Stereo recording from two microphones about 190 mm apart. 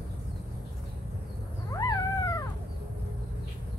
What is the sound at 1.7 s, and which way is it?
Dog, 20° left (ahead or behind).